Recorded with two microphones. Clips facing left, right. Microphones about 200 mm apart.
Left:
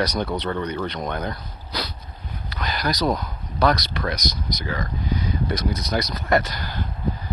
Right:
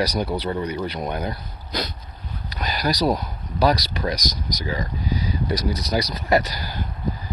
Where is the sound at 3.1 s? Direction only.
10° right (ahead or behind).